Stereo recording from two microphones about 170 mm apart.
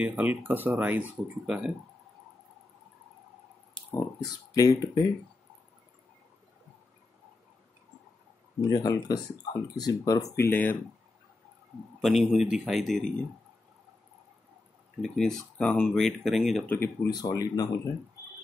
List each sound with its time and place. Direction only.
0.0 s speech: 10° right (ahead or behind)
3.9 s speech: 20° left (ahead or behind)
8.5 s speech: 20° left (ahead or behind)
12.0 s speech: centre (ahead or behind)
15.0 s speech: 5° left (ahead or behind)
16.7 s speech: 15° left (ahead or behind)